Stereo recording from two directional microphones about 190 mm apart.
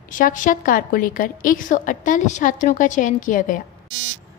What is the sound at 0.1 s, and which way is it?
A woman's voice, 45° left (ahead or behind).